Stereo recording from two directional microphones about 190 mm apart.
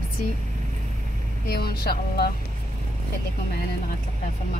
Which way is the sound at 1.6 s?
55° left (ahead or behind).